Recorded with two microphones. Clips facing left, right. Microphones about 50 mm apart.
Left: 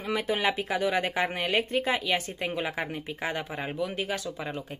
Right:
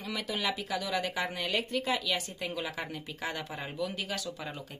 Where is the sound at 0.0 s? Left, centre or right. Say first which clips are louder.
Left 7 dB; left.